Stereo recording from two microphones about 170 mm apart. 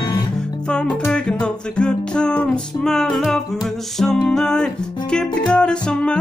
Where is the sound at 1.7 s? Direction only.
5° left (ahead or behind).